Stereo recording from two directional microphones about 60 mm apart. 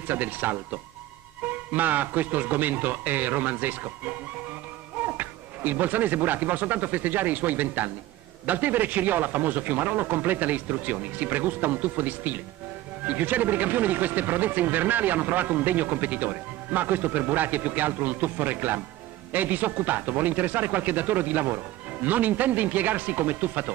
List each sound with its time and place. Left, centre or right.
0.1 s a man's voice: right